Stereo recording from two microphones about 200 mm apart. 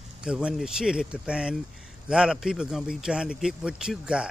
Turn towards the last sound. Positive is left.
turn(degrees=-5)  # may be behind; listen again after turning